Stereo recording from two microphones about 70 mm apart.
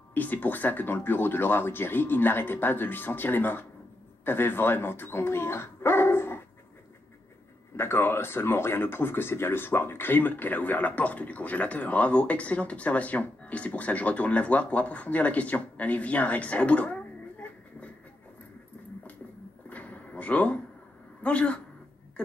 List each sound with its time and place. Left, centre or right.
0.1 s speech: left
7.7 s speech: left; by 17.9 s centre
19.7 s a sound: left
21.2 s a woman's voice: centre